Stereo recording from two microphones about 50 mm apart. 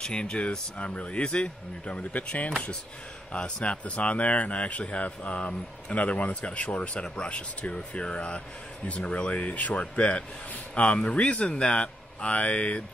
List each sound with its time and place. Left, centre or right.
0.0 s speech: centre
3.3 s speech: centre